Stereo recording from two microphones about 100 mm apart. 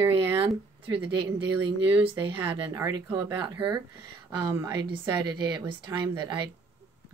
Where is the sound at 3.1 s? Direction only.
50° right (ahead or behind).